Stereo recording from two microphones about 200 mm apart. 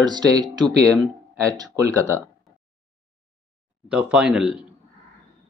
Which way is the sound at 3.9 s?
5° right (ahead or behind).